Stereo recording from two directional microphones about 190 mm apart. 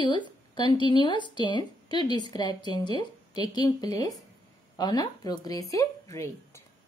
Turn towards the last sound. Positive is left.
turn(degrees=15)  # may be behind; listen again after turning